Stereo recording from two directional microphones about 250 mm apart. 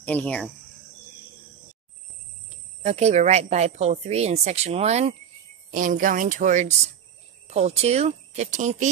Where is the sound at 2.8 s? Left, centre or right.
Right.